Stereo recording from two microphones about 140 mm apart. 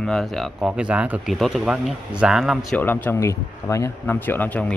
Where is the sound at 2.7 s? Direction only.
15° left (ahead or behind).